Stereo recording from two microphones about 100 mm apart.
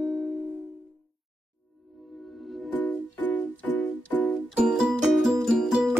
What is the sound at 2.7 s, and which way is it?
Music, 15° left (ahead or behind).